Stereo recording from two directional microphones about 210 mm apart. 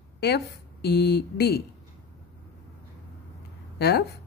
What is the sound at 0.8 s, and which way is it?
Speech, 50° left (ahead or behind).